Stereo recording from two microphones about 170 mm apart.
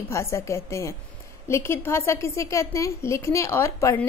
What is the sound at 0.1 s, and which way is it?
A woman's voice, 15° left (ahead or behind).